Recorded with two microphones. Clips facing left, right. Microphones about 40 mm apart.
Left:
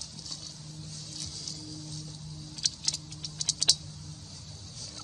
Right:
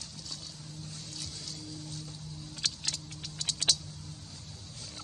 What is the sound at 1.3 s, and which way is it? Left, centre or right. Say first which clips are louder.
Music: even; right.